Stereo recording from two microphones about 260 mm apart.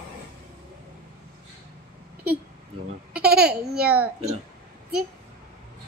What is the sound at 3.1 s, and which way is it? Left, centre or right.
Baby laughter, right.